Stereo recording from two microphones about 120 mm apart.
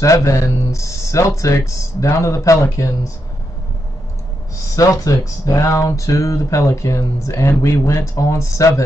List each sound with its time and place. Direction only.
0.0 s speech: 25° left (ahead or behind)
4.7 s speech: 30° left (ahead or behind)